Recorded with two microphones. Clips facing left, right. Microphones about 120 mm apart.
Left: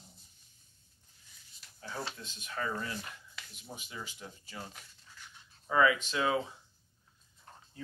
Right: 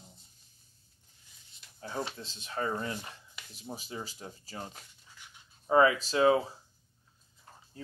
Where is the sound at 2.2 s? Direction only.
30° right (ahead or behind).